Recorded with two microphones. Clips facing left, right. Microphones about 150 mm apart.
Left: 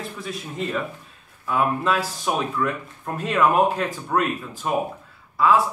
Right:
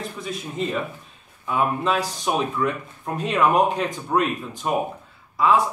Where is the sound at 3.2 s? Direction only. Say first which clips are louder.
Even; centre (ahead or behind).